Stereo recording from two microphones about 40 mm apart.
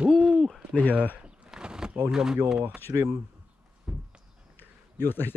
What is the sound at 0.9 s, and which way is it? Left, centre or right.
Speech, right.